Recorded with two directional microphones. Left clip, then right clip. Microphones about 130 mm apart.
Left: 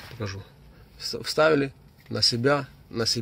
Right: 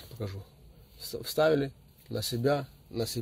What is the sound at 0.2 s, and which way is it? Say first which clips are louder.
Speech: left 4 dB; 5° right (ahead or behind).